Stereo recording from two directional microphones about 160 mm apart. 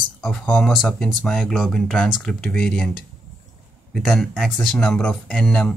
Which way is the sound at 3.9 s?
5° left (ahead or behind).